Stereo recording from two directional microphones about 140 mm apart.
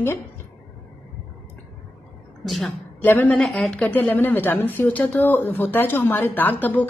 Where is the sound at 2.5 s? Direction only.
Centre (ahead or behind).